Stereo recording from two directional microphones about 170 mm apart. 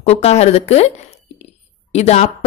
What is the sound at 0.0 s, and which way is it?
A woman's voice, 40° left (ahead or behind).